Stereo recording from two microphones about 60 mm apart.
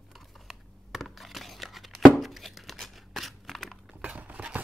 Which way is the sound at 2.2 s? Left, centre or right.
Centre.